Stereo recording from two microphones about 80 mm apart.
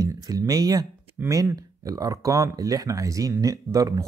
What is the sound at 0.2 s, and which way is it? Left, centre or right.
Speech, right.